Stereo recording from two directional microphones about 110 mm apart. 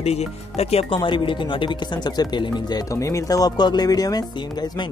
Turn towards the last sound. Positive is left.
turn(degrees=35)  # may be behind; listen again after turning